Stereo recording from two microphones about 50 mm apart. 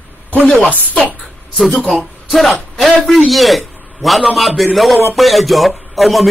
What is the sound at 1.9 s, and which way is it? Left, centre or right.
A man's voice, centre.